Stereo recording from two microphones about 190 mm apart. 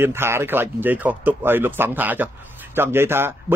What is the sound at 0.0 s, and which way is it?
Speech, 10° right (ahead or behind).